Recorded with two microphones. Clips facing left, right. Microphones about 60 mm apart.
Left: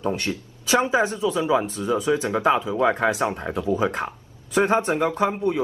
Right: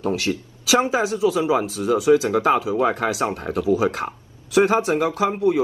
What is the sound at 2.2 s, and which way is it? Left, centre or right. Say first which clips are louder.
Speech: right 2 dB; left.